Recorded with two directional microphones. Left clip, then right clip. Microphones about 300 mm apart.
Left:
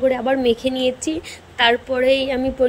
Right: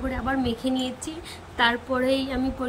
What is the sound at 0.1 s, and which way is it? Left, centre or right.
A woman's voice, centre.